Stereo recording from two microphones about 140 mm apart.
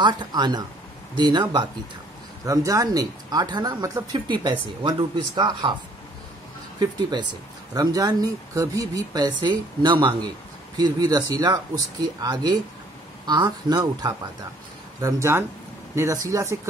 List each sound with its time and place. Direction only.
0.0 s speech: 30° right (ahead or behind)
6.8 s speech: 30° right (ahead or behind)